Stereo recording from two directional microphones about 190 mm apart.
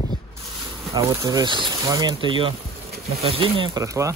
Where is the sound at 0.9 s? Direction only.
20° right (ahead or behind).